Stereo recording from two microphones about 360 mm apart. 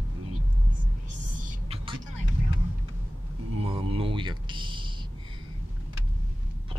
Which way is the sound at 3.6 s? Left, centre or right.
Centre.